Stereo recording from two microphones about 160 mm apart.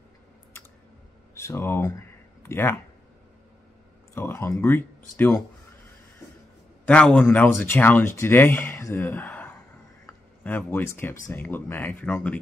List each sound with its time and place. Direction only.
1.3 s speech: 15° left (ahead or behind)
4.1 s speech: 15° left (ahead or behind)
6.9 s speech: 5° left (ahead or behind)